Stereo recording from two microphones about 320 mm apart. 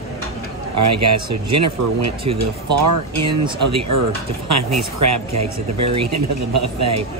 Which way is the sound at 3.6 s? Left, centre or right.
Right.